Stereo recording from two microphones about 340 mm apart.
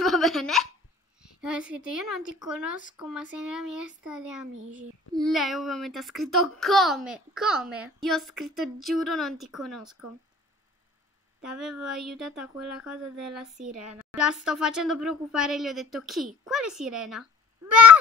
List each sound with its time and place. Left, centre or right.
0.0 s a sound: centre
1.9 s a child's voice: centre
11.4 s a child's voice: centre
13.7 s a woman's voice: right
13.9 s a child's voice: centre